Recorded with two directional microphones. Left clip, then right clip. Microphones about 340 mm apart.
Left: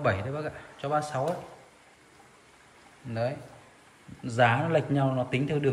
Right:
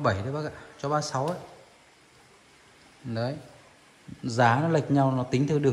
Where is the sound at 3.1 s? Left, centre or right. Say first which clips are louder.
Left 1 dB; centre.